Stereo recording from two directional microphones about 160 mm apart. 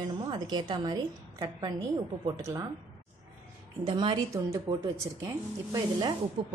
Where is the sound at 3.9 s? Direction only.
30° right (ahead or behind).